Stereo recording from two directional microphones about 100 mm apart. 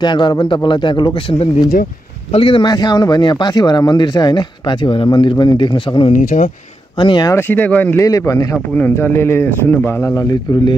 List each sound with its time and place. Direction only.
0.0 s speech: 50° left (ahead or behind)
2.3 s speech: 60° left (ahead or behind)
2.6 s speech: 45° left (ahead or behind)
7.3 s speech: 20° left (ahead or behind)
8.0 s speech: 35° left (ahead or behind)
8.7 s speech: 20° left (ahead or behind)
10.0 s speech: 40° left (ahead or behind)